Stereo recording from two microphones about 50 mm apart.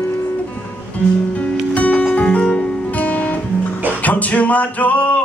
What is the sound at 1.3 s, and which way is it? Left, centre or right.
Music, left.